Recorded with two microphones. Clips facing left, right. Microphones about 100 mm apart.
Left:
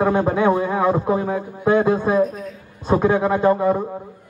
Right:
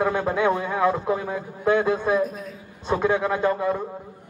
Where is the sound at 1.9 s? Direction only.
40° left (ahead or behind).